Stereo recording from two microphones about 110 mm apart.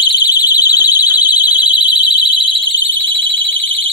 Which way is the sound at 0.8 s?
20° right (ahead or behind).